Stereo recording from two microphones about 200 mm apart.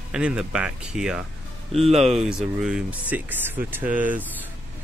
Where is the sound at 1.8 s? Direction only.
30° right (ahead or behind).